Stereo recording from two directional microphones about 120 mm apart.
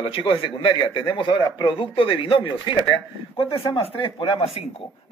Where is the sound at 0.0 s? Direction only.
45° left (ahead or behind).